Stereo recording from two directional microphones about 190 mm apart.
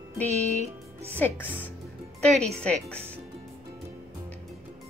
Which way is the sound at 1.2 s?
10° left (ahead or behind).